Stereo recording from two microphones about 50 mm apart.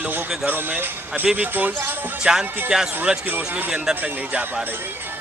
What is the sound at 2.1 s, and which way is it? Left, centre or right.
Speech, centre.